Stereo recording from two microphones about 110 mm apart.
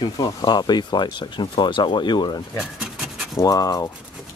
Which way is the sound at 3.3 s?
35° left (ahead or behind).